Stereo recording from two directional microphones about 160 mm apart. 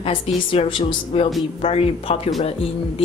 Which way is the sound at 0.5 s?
35° left (ahead or behind).